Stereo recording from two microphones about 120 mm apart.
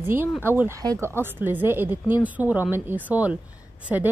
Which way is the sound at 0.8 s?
30° right (ahead or behind).